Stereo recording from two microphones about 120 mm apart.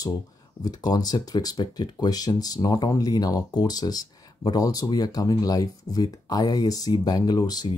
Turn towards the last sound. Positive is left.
turn(degrees=35)  # may be behind; listen again after turning